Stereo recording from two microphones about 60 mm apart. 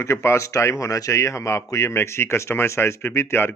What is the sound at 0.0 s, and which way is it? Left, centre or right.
Speech, left.